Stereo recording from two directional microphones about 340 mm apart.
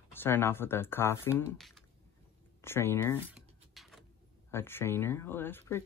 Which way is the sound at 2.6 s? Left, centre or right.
Centre.